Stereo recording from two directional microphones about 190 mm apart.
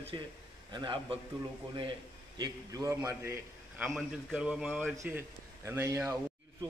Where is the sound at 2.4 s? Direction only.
15° right (ahead or behind).